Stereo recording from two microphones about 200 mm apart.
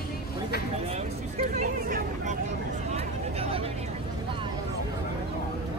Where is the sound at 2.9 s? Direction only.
30° right (ahead or behind).